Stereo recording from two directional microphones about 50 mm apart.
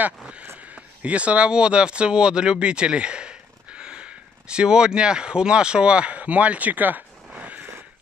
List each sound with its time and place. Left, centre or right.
0.6 s speech: right